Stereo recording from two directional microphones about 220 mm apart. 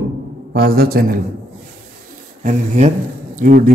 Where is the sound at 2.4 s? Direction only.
35° right (ahead or behind).